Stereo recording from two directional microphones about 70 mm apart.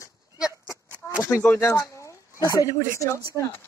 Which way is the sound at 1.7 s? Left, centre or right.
Left.